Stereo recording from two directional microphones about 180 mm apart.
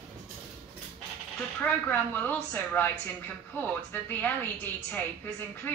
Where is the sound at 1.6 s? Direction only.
10° left (ahead or behind).